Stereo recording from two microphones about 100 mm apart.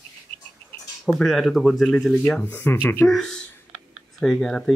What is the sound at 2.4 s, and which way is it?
Speech, 20° left (ahead or behind).